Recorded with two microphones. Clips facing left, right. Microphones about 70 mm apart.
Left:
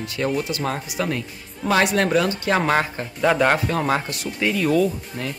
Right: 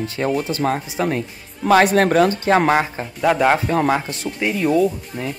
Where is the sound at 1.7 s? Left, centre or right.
Right.